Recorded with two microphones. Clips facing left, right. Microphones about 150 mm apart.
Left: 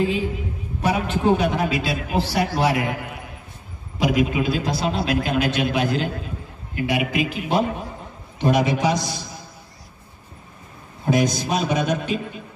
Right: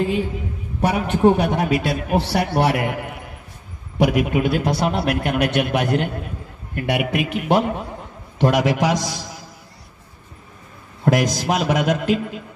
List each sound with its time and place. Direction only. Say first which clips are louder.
0.7 s a man's voice: right 2 dB; 65° right (ahead or behind)
4.0 s a man's voice: right 2 dB; 60° right (ahead or behind)
8.4 s a man's voice: right 2 dB; 90° right
11.1 s a man's voice: right 2 dB; 90° right